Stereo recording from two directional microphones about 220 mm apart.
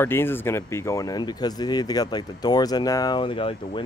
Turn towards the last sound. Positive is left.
turn(degrees=25)  # may be behind; listen again after turning